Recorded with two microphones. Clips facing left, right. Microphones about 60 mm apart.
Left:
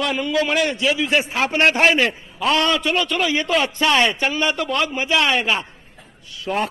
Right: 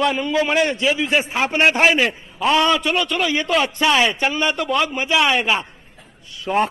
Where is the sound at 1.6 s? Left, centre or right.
Centre.